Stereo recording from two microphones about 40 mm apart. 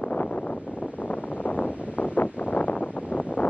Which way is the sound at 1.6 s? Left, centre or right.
Left.